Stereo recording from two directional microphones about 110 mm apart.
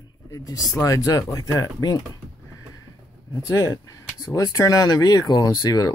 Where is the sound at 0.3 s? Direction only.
35° left (ahead or behind).